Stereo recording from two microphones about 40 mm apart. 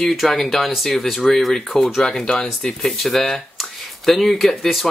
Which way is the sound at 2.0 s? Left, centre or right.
Centre.